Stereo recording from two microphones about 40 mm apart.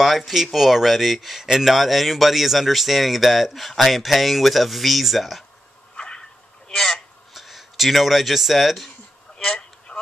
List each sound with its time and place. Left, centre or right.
0.0 s speech: centre
5.9 s a sound: left
6.7 s speech: centre
7.3 s speech: centre
9.4 s vehicle: centre